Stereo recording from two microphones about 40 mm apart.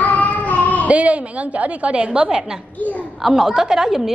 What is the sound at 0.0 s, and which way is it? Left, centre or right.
Child singing, left.